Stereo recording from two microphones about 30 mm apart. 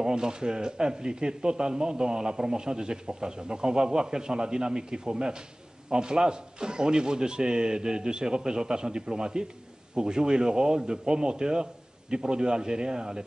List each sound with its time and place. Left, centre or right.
0.0 s speech: right